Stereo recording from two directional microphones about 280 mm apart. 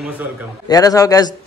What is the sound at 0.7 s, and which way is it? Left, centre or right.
Speech, centre.